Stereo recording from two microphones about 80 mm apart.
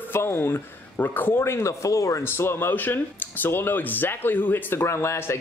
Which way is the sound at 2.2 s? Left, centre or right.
Left.